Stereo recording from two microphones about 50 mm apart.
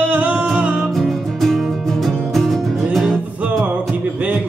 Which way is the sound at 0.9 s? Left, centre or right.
Centre.